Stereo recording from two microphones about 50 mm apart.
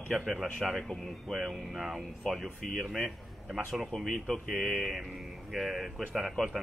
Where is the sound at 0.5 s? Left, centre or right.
Centre.